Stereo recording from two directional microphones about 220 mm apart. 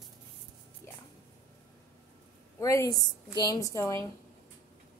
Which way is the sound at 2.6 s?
15° left (ahead or behind).